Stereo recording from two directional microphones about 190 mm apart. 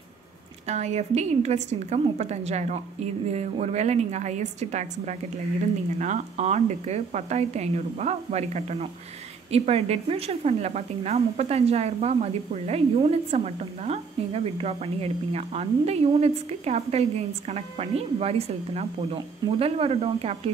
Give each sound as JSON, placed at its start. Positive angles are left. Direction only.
{"t": 0.7, "sound": "a woman's voice", "side_deg": -35}